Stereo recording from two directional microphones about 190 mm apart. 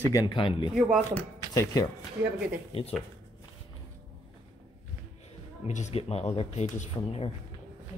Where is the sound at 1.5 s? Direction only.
15° left (ahead or behind).